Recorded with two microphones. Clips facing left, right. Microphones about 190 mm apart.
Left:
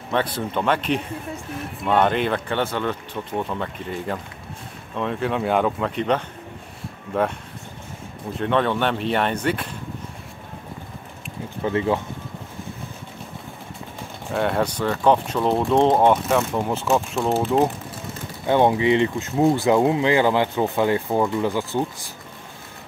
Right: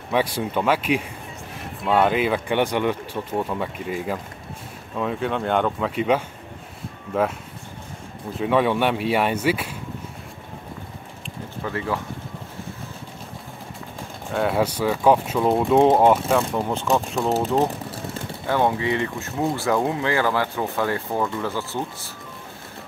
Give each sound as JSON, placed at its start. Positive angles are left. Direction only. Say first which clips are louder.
{"t": 0.1, "sound": "speech", "louder": "right 1 dB", "side_deg": -10}
{"t": 8.4, "sound": "speech", "louder": "right 1 dB", "side_deg": -10}
{"t": 11.6, "sound": "speech", "louder": "left 5 dB", "side_deg": 20}
{"t": 14.3, "sound": "speech", "louder": "even", "side_deg": -5}
{"t": 18.5, "sound": "speech", "louder": "left 4 dB", "side_deg": 20}